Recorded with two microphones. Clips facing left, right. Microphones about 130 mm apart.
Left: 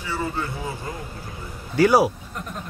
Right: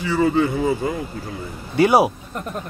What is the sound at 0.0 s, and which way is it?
Speech, 90° right.